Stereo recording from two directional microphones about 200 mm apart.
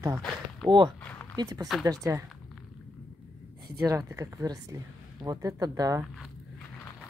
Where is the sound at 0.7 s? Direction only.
20° right (ahead or behind).